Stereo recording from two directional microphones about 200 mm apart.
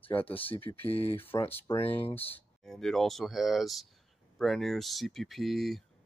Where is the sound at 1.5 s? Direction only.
10° left (ahead or behind).